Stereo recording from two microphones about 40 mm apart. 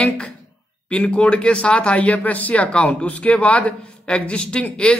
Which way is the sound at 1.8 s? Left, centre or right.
Left.